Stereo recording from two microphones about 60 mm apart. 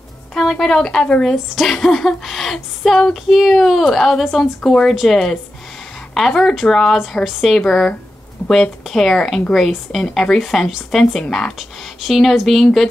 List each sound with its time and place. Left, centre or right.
0.3 s speech: centre
1.3 s speech: centre
8.4 s a sound: left
8.8 s speech: centre